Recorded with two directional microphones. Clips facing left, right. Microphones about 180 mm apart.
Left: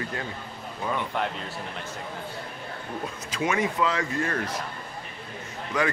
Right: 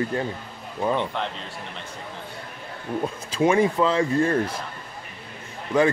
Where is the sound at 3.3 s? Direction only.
30° right (ahead or behind).